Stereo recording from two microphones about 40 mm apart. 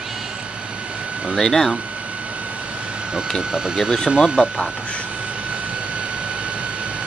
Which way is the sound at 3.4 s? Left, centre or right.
Centre.